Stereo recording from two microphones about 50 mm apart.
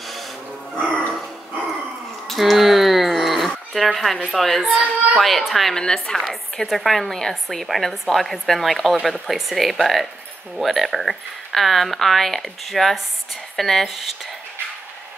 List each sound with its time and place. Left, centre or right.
0.0 s music: centre
0.7 s music: centre
2.2 s a sound: centre
4.3 s a woman's voice: centre
5.8 s a woman's voice: centre